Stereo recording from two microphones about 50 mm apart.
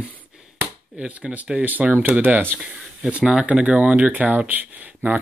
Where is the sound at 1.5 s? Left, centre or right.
Right.